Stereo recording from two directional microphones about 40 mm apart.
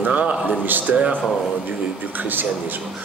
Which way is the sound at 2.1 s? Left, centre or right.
Right.